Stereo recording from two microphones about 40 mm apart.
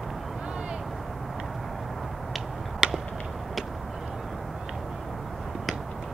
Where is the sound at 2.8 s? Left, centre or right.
Centre.